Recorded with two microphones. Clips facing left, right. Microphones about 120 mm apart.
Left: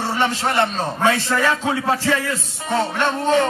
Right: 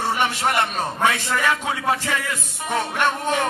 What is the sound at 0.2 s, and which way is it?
A man's voice, 30° left (ahead or behind).